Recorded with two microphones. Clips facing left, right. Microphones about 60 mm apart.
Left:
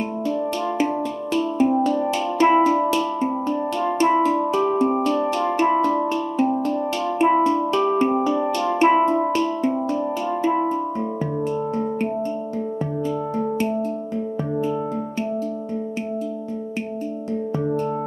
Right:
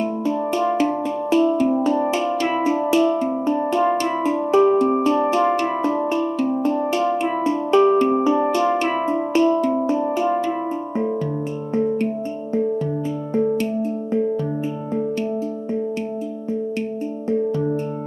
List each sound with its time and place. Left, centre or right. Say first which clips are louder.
0.3 s music: right 4 dB; right
2.3 s music: left 5 dB; left
2.6 s music: right 1 dB; centre
7.2 s music: left 5 dB; left
7.4 s music: right 3 dB; centre
8.7 s music: left 5 dB; left
9.0 s music: right 1 dB; centre